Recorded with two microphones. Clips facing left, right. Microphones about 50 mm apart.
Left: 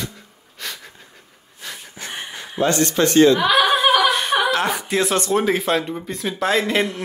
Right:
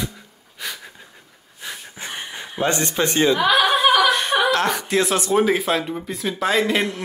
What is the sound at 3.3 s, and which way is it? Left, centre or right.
A woman's voice, centre.